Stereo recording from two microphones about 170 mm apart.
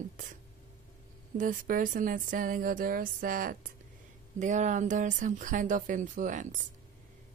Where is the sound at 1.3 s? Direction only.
50° right (ahead or behind).